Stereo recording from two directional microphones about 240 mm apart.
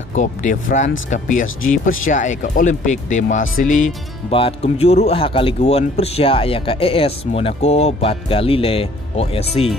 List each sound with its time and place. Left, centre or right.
0.1 s speech: left